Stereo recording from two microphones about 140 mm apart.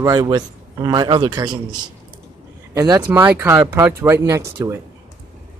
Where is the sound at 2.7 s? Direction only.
25° right (ahead or behind).